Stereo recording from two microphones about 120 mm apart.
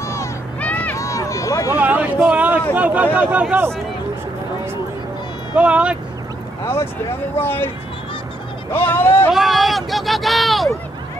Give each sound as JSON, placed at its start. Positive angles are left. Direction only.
{"t": 0.0, "sound": "run", "side_deg": 25}
{"t": 0.6, "sound": "run", "side_deg": 10}
{"t": 0.9, "sound": "a sound", "side_deg": 25}
{"t": 1.8, "sound": "a sound", "side_deg": -15}
{"t": 2.7, "sound": "speech", "side_deg": -15}
{"t": 5.6, "sound": "speech", "side_deg": -10}
{"t": 6.6, "sound": "speech", "side_deg": 20}
{"t": 8.7, "sound": "speech", "side_deg": 20}
{"t": 9.3, "sound": "speech", "side_deg": 0}